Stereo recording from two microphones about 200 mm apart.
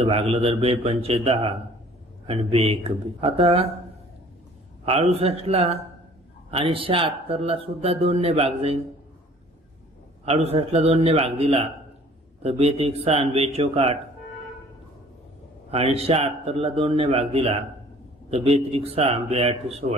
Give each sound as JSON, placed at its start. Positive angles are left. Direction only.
{"t": 0.0, "sound": "speech", "side_deg": -30}
{"t": 4.9, "sound": "speech", "side_deg": -30}
{"t": 10.2, "sound": "speech", "side_deg": -30}
{"t": 15.7, "sound": "speech", "side_deg": -30}
{"t": 18.7, "sound": "speech", "side_deg": -30}